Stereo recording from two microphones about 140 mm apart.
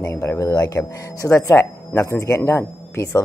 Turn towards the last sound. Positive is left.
turn(degrees=20)  # may be behind; listen again after turning